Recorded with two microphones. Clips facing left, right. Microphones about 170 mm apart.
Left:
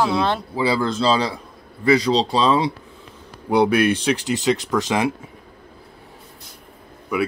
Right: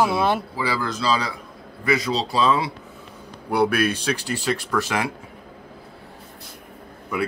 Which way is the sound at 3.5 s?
15° left (ahead or behind).